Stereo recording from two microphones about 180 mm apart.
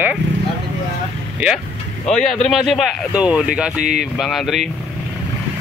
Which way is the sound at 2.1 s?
Centre (ahead or behind).